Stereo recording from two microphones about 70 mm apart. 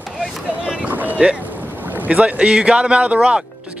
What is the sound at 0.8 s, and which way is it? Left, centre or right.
Boat, right.